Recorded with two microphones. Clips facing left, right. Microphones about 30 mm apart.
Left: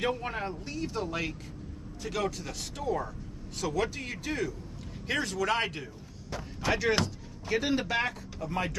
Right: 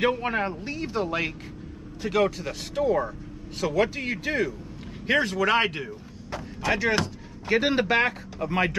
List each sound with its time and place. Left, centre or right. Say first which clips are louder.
0.0 s speech: right 7 dB; right
6.6 s speech: right 3 dB; centre
7.4 s speech: right 6 dB; right